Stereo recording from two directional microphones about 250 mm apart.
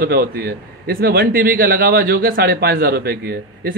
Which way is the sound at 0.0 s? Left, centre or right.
Right.